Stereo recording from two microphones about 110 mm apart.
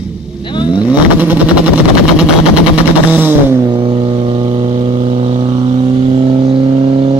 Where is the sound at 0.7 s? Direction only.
15° right (ahead or behind).